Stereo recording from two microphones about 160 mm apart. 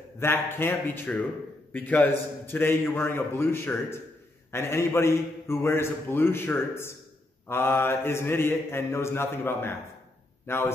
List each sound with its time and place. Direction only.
0.2 s a man's voice: 15° left (ahead or behind)